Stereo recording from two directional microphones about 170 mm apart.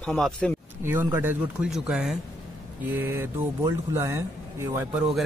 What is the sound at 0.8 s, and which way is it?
Speech, 10° right (ahead or behind).